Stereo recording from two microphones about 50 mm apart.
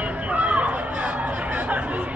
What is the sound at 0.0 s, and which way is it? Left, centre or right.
Chatter, right.